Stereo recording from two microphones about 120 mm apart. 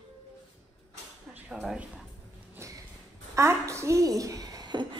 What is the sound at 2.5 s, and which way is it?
Music, 25° right (ahead or behind).